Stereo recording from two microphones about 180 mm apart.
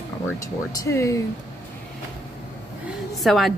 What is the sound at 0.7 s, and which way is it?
Speech, 15° left (ahead or behind).